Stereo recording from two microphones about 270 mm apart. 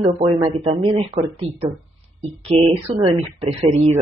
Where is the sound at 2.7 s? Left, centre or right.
Centre.